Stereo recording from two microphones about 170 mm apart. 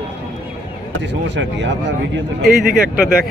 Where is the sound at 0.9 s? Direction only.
90° right.